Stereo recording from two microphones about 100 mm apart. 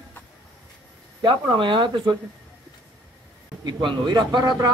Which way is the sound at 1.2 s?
50° right (ahead or behind).